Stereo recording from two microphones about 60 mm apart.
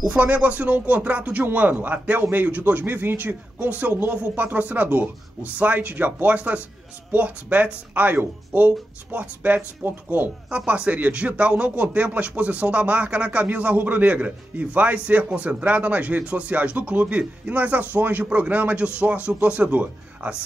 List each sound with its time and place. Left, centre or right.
0.1 s speech: right
10.5 s speech: centre